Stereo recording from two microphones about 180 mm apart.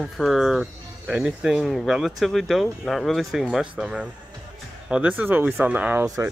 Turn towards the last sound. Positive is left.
turn(degrees=-20)  # may be behind; listen again after turning